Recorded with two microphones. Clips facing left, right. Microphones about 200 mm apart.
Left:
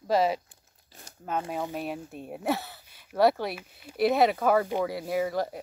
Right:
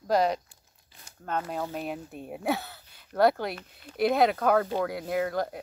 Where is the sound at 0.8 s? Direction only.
40° left (ahead or behind).